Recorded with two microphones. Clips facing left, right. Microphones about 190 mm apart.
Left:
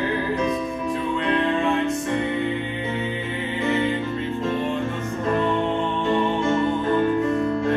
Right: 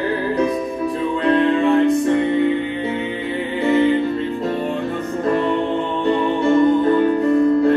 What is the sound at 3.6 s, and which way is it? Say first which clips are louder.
Music: right 7 dB; 35° right (ahead or behind).